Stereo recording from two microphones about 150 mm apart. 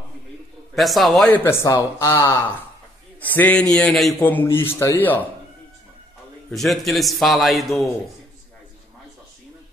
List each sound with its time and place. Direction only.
0.7 s a man's voice: centre (ahead or behind)
1.3 s a man's voice: 15° left (ahead or behind)
4.2 s speech: 10° left (ahead or behind)
6.5 s a man's voice: centre (ahead or behind)